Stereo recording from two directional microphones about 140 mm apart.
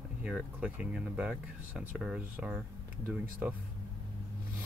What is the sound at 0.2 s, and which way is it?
Speech, 10° right (ahead or behind).